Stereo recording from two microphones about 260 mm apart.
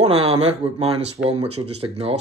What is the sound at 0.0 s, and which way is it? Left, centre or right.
Speech, right.